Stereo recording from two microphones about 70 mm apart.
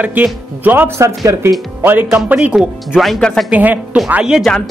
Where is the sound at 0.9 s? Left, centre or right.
Right; by 3.0 s centre.